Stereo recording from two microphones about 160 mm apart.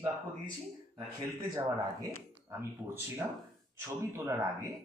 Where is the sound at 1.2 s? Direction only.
20° right (ahead or behind).